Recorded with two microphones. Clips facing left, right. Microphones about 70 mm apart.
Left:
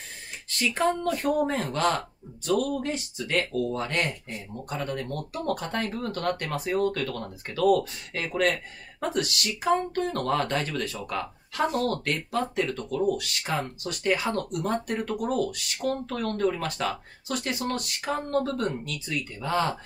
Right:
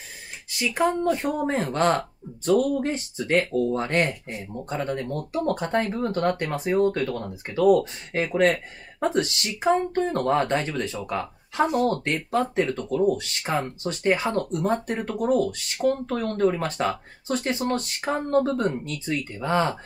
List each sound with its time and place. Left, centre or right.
0.5 s speech: centre